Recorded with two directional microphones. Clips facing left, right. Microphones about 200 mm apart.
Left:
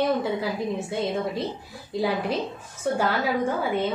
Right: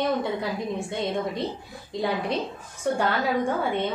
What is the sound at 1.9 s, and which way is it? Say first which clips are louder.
A woman's voice: left 1 dB; 5° left (ahead or behind).